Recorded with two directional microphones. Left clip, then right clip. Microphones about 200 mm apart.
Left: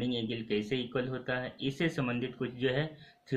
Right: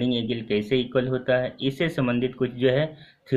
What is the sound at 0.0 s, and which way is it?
Speech, 50° right (ahead or behind).